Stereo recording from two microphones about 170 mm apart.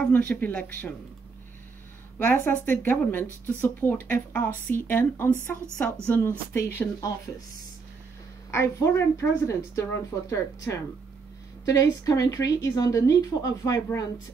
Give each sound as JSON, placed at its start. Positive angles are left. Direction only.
{"t": 0.1, "sound": "speech", "side_deg": 10}
{"t": 2.1, "sound": "speech", "side_deg": 10}
{"t": 8.5, "sound": "speech", "side_deg": 15}